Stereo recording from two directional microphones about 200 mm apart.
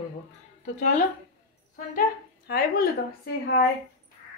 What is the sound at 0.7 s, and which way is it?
A woman's voice, 40° left (ahead or behind).